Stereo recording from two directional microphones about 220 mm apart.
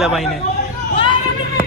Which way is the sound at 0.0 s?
Centre (ahead or behind).